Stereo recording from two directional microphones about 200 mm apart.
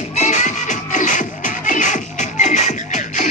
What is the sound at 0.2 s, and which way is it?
Music, 35° left (ahead or behind).